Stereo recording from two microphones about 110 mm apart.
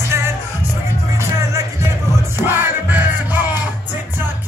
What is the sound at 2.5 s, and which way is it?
Music, 20° right (ahead or behind).